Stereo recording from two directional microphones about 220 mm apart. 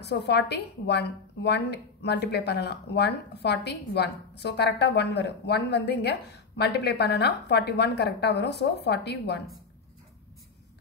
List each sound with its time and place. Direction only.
0.0 s a woman's voice: 50° left (ahead or behind)